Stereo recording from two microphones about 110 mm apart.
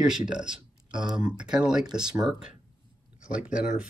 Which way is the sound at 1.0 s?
40° right (ahead or behind).